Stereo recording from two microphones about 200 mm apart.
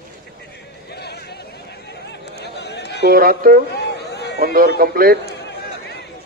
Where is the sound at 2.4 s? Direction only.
55° left (ahead or behind).